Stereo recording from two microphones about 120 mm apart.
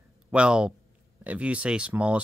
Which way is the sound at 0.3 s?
10° right (ahead or behind).